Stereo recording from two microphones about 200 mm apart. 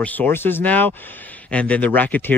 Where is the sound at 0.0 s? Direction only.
10° left (ahead or behind).